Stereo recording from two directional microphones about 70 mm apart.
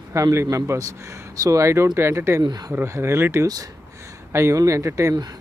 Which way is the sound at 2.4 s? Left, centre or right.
Right.